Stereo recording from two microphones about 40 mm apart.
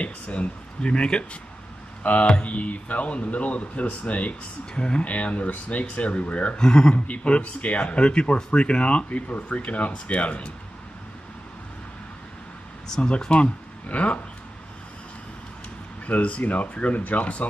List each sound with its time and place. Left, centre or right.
0.0 s a sound: left
2.0 s speech: left
6.6 s speech: centre
7.1 s speech: left
12.8 s speech: centre
13.8 s speech: left
16.1 s speech: left